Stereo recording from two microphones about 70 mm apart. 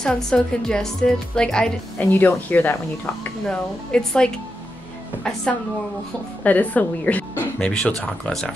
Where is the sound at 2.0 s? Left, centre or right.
Left.